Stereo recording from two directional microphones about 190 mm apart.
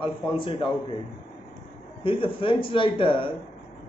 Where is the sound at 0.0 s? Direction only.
25° left (ahead or behind).